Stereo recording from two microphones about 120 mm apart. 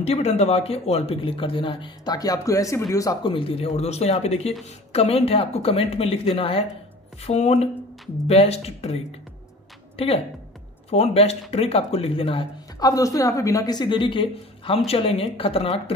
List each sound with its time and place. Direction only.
0.0 s speech: 60° left (ahead or behind); by 3.2 s 30° left (ahead or behind)
3.2 s speech: 45° left (ahead or behind)
7.2 s speech: 60° left (ahead or behind)
12.7 s a woman's voice: 30° left (ahead or behind); by 15.7 s 50° left (ahead or behind)